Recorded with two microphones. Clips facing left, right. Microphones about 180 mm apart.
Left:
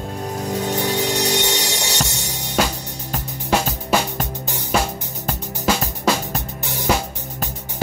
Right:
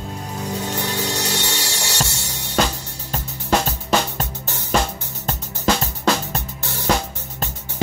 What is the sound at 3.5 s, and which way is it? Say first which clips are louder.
Music: even; 10° left (ahead or behind).